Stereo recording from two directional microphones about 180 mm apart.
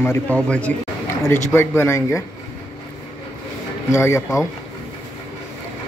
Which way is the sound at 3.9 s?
15° left (ahead or behind).